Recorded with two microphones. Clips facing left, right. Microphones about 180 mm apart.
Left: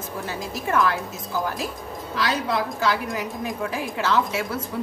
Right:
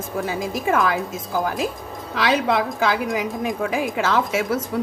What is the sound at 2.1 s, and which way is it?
Speech, 65° right (ahead or behind).